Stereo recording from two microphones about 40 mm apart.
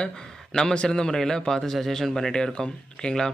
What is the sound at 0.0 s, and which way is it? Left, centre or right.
Speech, centre.